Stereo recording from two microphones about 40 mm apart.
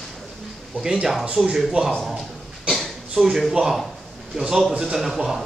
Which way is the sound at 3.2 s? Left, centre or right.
Centre.